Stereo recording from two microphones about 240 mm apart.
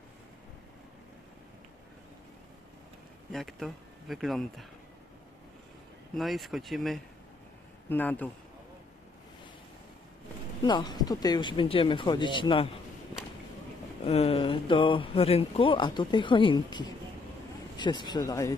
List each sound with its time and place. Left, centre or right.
3.3 s speech: centre
6.1 s speech: centre
10.6 s speech: centre
14.0 s speech: left